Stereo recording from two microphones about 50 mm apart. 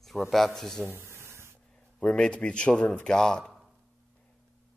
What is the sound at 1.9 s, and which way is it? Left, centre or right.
Speech, centre.